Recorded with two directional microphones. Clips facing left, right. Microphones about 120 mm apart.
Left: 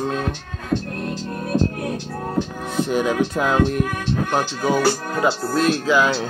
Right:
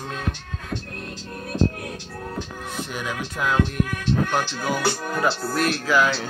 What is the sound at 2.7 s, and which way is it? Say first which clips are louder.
Music: left 11 dB; 30° left (ahead or behind).